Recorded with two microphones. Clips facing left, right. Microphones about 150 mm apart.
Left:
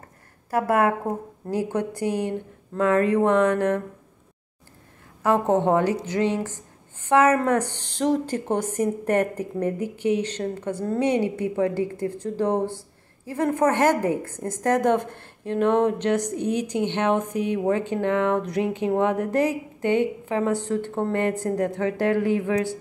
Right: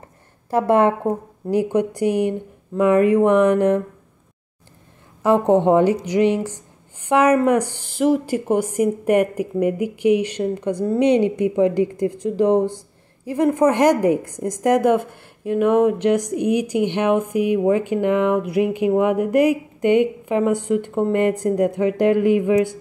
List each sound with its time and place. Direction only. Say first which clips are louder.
0.5 s a woman's voice: right 5 dB; 25° right (ahead or behind)
5.2 s a woman's voice: right 5 dB; 20° right (ahead or behind)